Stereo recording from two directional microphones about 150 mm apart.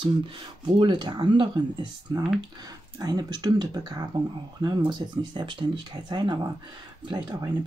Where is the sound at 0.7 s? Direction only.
30° right (ahead or behind).